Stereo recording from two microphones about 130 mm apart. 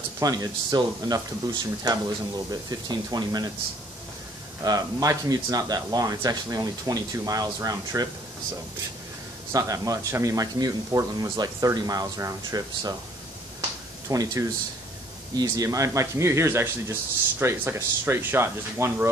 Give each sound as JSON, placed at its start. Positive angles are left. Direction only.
{"t": 0.2, "sound": "speech", "side_deg": -30}
{"t": 4.6, "sound": "speech", "side_deg": -25}
{"t": 9.5, "sound": "speech", "side_deg": -25}
{"t": 13.6, "sound": "a sound", "side_deg": -25}
{"t": 15.3, "sound": "speech", "side_deg": -30}